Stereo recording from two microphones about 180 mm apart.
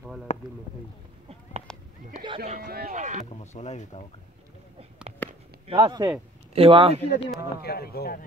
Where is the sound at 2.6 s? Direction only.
60° right (ahead or behind).